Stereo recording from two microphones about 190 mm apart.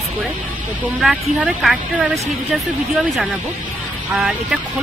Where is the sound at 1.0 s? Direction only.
5° right (ahead or behind).